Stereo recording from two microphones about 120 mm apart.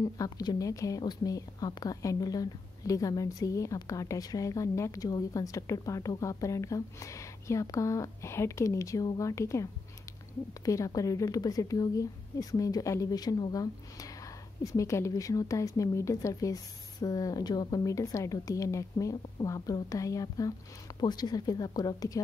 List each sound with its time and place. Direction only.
0.0 s a woman's voice: 35° left (ahead or behind)